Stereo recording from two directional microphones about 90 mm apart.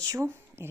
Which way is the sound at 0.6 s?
25° right (ahead or behind).